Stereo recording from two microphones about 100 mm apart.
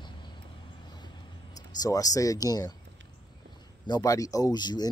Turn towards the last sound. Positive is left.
turn(degrees=45)  # may be behind; listen again after turning